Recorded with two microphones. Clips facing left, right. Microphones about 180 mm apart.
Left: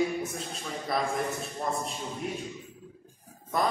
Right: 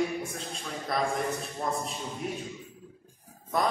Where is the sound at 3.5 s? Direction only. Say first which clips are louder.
Even; centre (ahead or behind).